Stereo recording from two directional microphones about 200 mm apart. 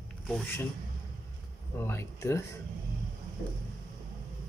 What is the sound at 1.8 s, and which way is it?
Speech, 15° left (ahead or behind).